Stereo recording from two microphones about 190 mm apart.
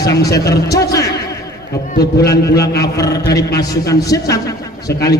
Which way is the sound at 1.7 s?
55° left (ahead or behind).